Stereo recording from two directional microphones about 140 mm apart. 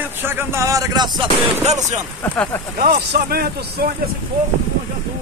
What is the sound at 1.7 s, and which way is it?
Speech, 55° right (ahead or behind).